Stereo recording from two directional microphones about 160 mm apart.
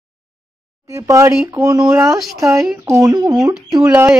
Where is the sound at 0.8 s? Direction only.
20° right (ahead or behind).